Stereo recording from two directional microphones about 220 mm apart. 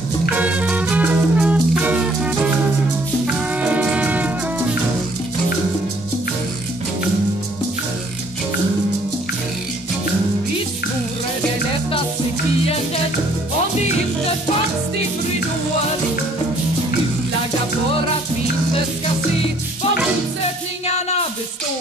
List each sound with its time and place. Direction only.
0.4 s music: 5° right (ahead or behind)
20.8 s music: 30° left (ahead or behind)